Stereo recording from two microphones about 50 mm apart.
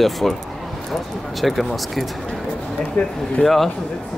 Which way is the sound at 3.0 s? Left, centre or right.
Left.